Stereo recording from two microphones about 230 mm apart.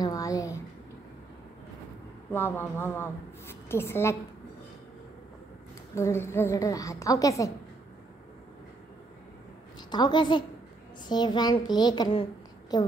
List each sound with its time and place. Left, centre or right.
0.0 s a sound: centre
2.3 s a woman's voice: centre
5.9 s a woman's voice: centre
9.8 s a child's voice: centre